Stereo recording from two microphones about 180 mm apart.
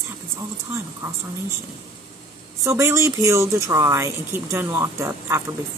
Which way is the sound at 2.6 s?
15° right (ahead or behind).